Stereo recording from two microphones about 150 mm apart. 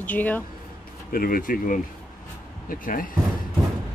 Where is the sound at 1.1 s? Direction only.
70° left (ahead or behind).